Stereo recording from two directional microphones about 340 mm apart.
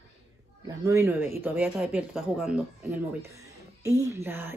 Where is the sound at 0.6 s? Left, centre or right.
Centre.